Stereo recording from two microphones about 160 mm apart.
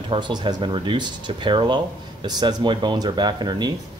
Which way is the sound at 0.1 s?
30° right (ahead or behind).